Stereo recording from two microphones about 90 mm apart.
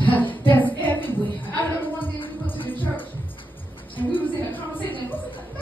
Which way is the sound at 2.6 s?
20° left (ahead or behind).